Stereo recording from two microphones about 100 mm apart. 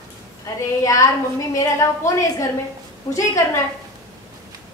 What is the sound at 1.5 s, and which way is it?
Speech, 35° left (ahead or behind).